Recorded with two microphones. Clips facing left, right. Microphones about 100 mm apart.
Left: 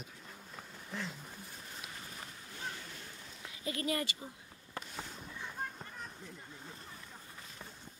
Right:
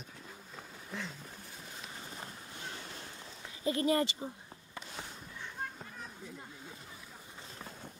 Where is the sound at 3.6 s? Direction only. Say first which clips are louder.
Right 6 dB; 30° right (ahead or behind).